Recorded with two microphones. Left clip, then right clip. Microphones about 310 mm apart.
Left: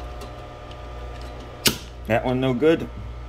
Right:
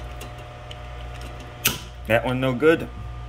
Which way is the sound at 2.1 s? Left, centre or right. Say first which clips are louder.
Even; centre.